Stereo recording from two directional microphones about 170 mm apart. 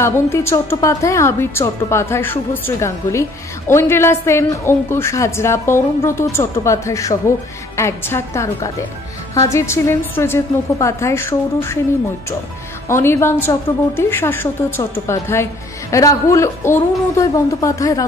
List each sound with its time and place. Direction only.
0.0 s a woman's voice: 15° left (ahead or behind)
12.8 s a woman's voice: 15° left (ahead or behind)